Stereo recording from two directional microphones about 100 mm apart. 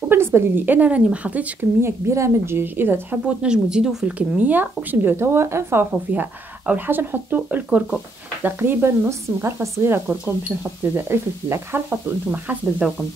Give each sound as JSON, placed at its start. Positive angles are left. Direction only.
{"t": 0.1, "sound": "speech", "side_deg": -25}